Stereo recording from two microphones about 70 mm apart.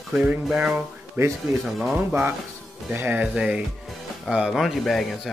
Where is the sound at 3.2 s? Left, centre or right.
Centre.